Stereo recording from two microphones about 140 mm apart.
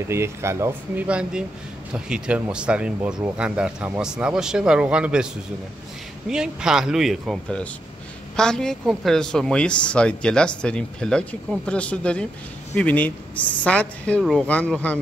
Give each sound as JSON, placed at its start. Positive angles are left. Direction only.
{"t": 0.1, "sound": "speech", "side_deg": -20}
{"t": 1.0, "sound": "speech", "side_deg": -10}